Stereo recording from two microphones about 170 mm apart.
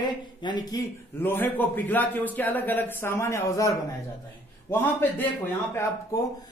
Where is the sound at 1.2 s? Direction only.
10° left (ahead or behind).